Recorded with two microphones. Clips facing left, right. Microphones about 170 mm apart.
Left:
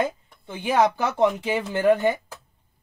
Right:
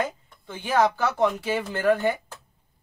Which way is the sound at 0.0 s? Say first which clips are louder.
Left 3 dB; 15° left (ahead or behind).